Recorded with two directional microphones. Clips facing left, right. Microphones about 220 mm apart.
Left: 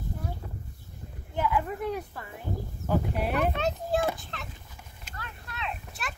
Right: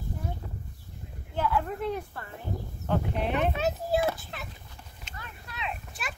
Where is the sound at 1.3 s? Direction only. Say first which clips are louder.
Even; 10° left (ahead or behind).